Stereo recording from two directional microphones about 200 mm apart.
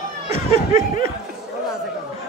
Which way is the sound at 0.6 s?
15° right (ahead or behind).